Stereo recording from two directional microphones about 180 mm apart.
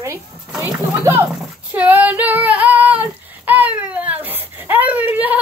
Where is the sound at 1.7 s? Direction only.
10° right (ahead or behind).